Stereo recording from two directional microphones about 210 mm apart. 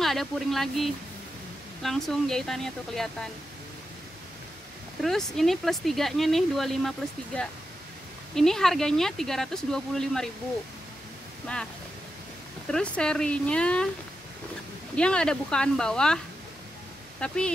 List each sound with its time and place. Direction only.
0.0 s speech: centre (ahead or behind)
5.0 s speech: centre (ahead or behind)
8.4 s speech: centre (ahead or behind)
12.6 s speech: 5° left (ahead or behind)
15.0 s speech: 5° left (ahead or behind)
17.2 s speech: 5° left (ahead or behind)